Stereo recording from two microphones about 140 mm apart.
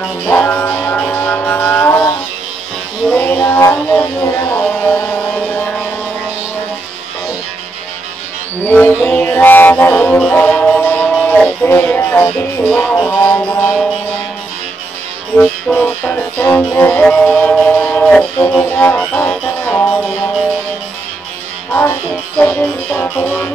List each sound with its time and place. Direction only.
0.2 s music: 10° left (ahead or behind)
3.1 s music: 10° left (ahead or behind)
8.6 s mantra: 15° left (ahead or behind)
9.0 s music: 15° left (ahead or behind)
15.3 s music: 5° left (ahead or behind)
22.4 s music: 10° left (ahead or behind)